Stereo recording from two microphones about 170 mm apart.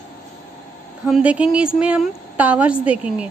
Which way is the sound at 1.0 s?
5° right (ahead or behind).